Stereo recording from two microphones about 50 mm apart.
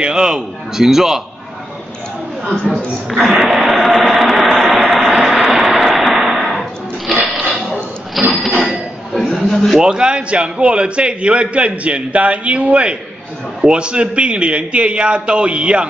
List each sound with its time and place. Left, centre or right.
0.0 s a man's voice: centre
2.5 s a woman's voice: left
3.1 s a sound: centre
7.5 s a sound: right
8.2 s cash register: centre
9.5 s a man's voice: centre
9.8 s a man's voice: centre